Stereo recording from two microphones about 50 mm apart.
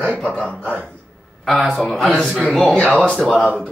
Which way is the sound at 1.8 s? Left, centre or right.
Centre.